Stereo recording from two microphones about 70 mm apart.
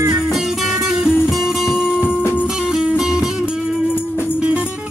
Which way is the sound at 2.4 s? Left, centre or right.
Centre.